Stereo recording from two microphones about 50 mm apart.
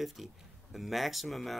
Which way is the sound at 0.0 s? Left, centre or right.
Centre.